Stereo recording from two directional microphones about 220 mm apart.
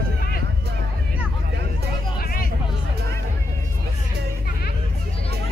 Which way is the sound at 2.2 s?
40° left (ahead or behind).